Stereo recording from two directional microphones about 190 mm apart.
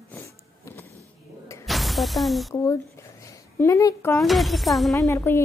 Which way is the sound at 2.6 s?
15° left (ahead or behind).